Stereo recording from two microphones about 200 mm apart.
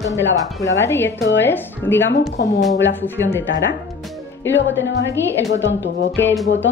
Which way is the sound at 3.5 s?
70° left (ahead or behind).